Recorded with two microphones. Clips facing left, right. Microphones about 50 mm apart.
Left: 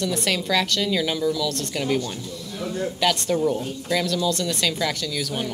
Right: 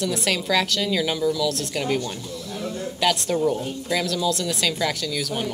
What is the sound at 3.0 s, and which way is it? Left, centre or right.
Speech, centre.